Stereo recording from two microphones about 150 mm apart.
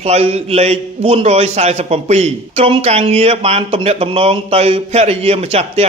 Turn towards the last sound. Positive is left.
turn(degrees=-45)  # may be behind; listen again after turning